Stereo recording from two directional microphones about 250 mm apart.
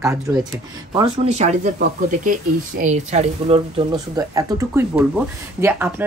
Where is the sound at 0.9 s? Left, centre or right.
Right; by 6.0 s centre.